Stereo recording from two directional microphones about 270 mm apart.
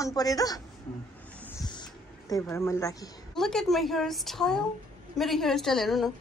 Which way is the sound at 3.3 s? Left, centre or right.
Centre.